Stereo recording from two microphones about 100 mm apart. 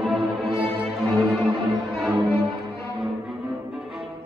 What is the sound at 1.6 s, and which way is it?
Music, centre (ahead or behind).